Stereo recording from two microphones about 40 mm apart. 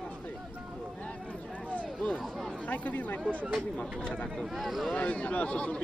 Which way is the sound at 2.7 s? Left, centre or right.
Left.